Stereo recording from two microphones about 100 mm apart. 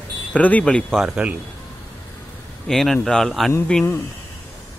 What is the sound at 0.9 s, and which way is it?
Speech, 10° right (ahead or behind).